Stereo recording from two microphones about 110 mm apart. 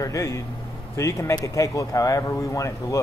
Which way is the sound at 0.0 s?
30° left (ahead or behind).